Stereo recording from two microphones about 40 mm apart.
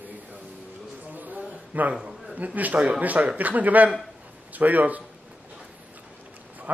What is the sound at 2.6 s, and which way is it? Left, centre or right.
A man's voice, right.